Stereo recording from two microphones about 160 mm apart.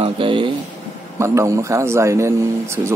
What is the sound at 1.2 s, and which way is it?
A man's voice, 20° right (ahead or behind).